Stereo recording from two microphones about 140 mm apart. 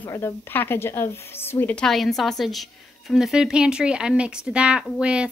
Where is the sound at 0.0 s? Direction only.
15° left (ahead or behind).